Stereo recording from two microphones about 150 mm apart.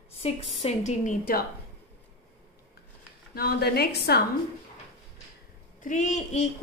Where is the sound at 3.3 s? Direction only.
90° left.